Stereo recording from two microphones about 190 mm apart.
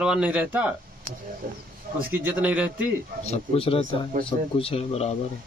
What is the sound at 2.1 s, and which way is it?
Speech, 10° right (ahead or behind).